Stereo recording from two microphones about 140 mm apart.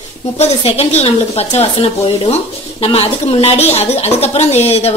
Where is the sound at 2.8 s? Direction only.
45° left (ahead or behind).